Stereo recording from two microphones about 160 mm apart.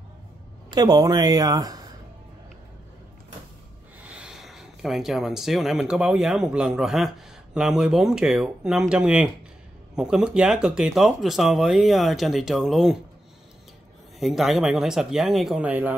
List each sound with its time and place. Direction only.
0.7 s speech: 25° right (ahead or behind)
4.0 s speech: 5° right (ahead or behind)
14.2 s speech: centre (ahead or behind)